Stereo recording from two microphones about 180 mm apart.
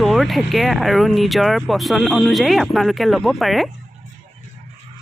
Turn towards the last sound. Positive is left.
turn(degrees=0)  # may be behind; listen again after turning